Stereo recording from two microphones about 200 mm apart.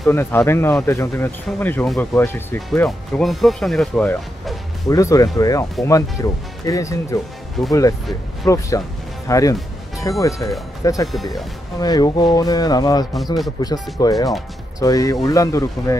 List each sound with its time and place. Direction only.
0.0 s speech: 10° left (ahead or behind)
8.5 s speech: 15° left (ahead or behind)